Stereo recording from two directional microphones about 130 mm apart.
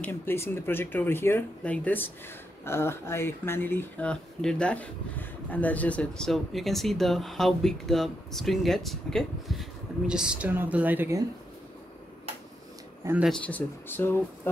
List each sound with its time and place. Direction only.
0.0 s speech: 15° left (ahead or behind); by 11.1 s 15° right (ahead or behind)
13.4 s speech: 15° left (ahead or behind)